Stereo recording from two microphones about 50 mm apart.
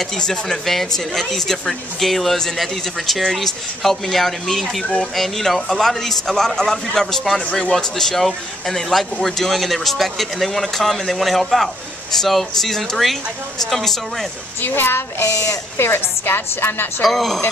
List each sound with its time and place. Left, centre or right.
0.0 s speech: centre
14.6 s a woman's voice: left
15.2 s speech: left
15.8 s a woman's voice: left
17.0 s speech: centre